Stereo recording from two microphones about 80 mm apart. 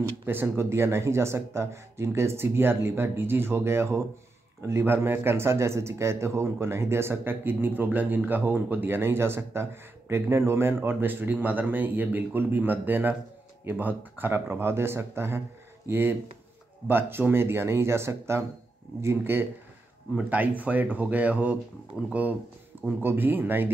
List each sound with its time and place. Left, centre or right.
0.3 s a man's voice: right
20.2 s speech: centre
23.0 s speech: right